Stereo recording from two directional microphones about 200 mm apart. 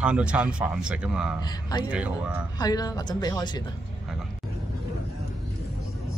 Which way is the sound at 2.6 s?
20° left (ahead or behind).